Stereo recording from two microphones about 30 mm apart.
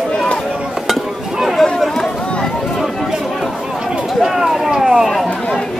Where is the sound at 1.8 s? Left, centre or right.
Centre.